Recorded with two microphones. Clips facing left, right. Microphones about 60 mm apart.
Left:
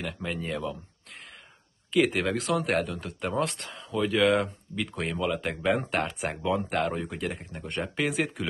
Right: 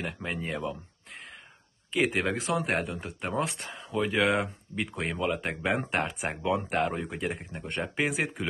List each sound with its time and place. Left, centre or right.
0.3 s speech: right
2.0 s speech: centre
2.8 s speech: centre
3.2 s speech: centre